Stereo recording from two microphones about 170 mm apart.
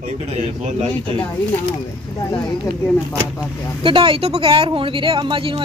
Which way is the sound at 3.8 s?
30° right (ahead or behind).